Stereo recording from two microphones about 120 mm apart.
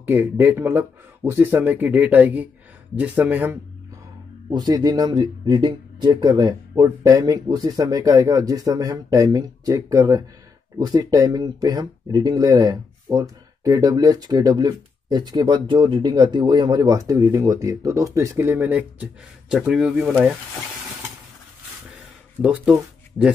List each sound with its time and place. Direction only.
0.0 s speech: 20° right (ahead or behind)
4.5 s speech: 35° right (ahead or behind); by 20.3 s 10° right (ahead or behind)
22.4 s speech: 10° right (ahead or behind)